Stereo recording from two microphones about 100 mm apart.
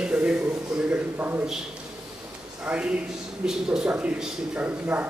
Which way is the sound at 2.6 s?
10° right (ahead or behind).